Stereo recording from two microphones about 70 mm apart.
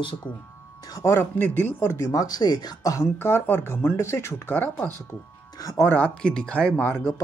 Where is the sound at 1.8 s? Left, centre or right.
Left.